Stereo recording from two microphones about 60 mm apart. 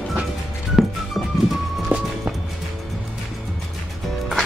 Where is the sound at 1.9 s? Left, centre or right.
Right.